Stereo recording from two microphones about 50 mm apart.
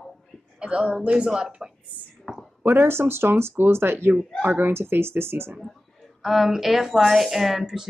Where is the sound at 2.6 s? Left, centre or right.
Right.